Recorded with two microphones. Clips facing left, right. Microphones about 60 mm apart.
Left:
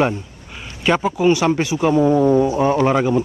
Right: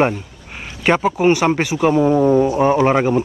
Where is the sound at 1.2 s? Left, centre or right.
Right.